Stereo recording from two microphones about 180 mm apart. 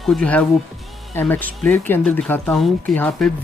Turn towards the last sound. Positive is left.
turn(degrees=5)  # may be behind; listen again after turning